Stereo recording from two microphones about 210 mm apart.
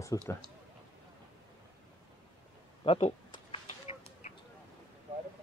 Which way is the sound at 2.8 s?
25° left (ahead or behind).